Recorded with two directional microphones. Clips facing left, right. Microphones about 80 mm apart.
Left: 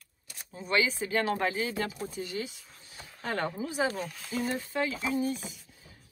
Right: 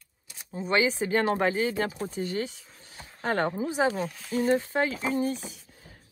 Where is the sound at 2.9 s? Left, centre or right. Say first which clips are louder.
Right 6 dB; right.